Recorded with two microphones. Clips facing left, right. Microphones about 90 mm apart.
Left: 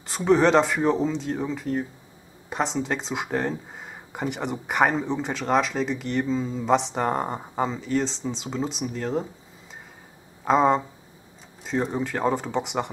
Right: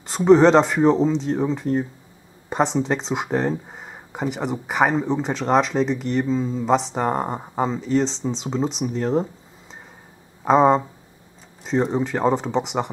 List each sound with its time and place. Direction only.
0.3 s speech: centre (ahead or behind)
1.3 s speech: 25° right (ahead or behind)
1.6 s speech: 5° right (ahead or behind)
10.4 s speech: 5° right (ahead or behind)